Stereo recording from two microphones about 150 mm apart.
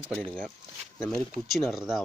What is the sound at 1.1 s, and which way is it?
Speech, centre (ahead or behind).